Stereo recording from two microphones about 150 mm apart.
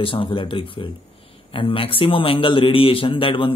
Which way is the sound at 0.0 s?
35° left (ahead or behind).